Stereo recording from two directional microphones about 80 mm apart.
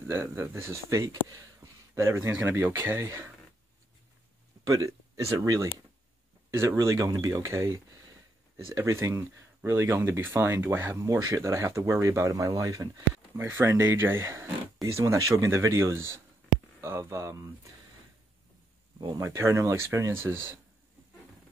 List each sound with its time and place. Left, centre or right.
0.0 s speech: right
1.6 s a sound: right
2.4 s speech: right
4.6 s speech: right
6.8 s speech: right
13.4 s speech: right
19.1 s speech: right